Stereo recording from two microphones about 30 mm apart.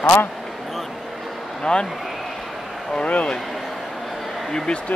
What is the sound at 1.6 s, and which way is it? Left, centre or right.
Speech, left.